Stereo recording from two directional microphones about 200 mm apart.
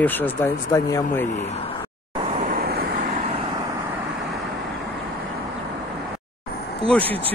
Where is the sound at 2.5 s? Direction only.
50° right (ahead or behind).